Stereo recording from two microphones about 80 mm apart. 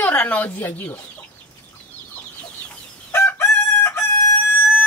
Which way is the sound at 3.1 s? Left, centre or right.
Left.